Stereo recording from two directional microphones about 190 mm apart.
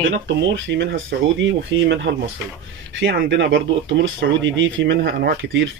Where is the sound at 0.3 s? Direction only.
70° right (ahead or behind).